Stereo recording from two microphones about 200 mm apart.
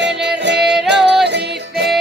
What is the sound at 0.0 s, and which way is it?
Music, 60° right (ahead or behind).